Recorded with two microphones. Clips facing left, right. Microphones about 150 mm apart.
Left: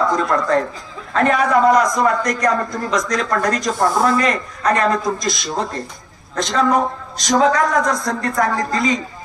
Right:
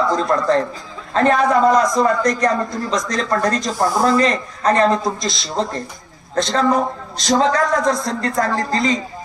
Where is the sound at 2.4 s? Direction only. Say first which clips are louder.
Even; 30° right (ahead or behind).